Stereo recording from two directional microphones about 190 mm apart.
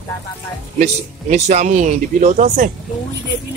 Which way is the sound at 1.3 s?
40° right (ahead or behind).